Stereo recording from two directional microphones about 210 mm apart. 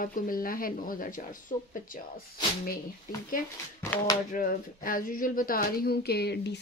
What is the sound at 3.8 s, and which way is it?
Speech, 10° left (ahead or behind).